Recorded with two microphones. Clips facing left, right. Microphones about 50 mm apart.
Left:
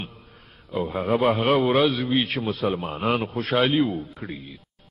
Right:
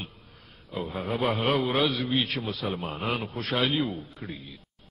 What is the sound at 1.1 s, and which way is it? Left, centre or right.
Speech, centre.